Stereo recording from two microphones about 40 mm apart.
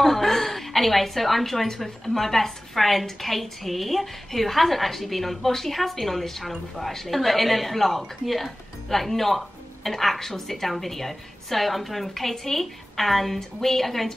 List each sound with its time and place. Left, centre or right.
0.0 s a woman's voice: centre